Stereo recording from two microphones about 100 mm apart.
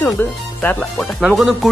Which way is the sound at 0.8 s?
Centre (ahead or behind).